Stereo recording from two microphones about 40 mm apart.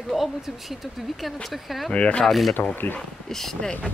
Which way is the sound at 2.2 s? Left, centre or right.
Centre.